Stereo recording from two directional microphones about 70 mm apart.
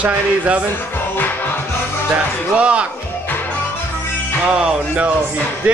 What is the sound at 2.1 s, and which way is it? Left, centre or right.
Speech, centre.